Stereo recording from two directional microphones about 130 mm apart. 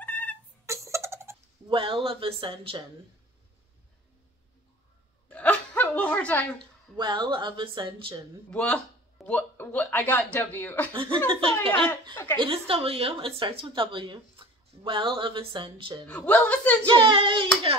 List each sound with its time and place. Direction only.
0.0 s a sound: 15° left (ahead or behind)
0.7 s music: 20° right (ahead or behind)
1.7 s speech: 40° right (ahead or behind)
5.3 s a sound: 10° left (ahead or behind)
7.0 s speech: 35° right (ahead or behind)
8.5 s speech: 10° left (ahead or behind)
10.9 s speech: 40° right (ahead or behind)
11.9 s speech: 15° left (ahead or behind)
12.4 s speech: 45° right (ahead or behind)
16.1 s speech: 10° left (ahead or behind)
16.8 s speech: 40° right (ahead or behind)